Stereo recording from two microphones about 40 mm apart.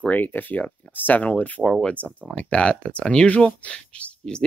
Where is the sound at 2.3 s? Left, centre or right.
Left.